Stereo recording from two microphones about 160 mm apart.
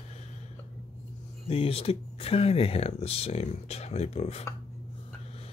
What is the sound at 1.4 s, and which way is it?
Speech, 35° left (ahead or behind).